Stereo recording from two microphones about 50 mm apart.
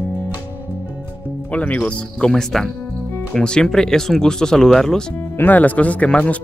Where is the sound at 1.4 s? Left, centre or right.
Left; by 5.0 s centre.